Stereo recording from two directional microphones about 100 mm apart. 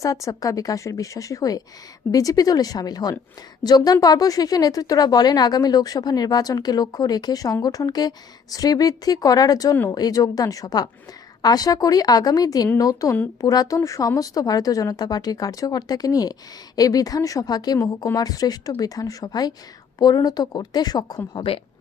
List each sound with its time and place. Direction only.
0.0 s speech: 35° left (ahead or behind)
21.3 s speech: 55° left (ahead or behind)